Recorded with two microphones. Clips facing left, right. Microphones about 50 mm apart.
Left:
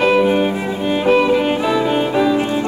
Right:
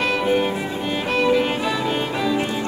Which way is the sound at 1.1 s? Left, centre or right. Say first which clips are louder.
Left 4 dB; centre.